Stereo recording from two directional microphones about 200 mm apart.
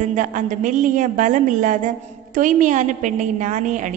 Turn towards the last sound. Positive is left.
turn(degrees=-40)  # may be behind; listen again after turning